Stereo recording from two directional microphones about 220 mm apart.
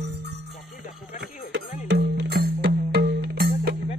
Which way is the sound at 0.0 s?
50° right (ahead or behind).